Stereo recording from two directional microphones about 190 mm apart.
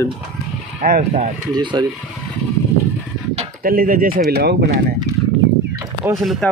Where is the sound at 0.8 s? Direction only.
45° right (ahead or behind).